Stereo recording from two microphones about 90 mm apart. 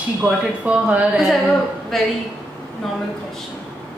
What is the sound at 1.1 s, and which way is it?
Speech, centre (ahead or behind).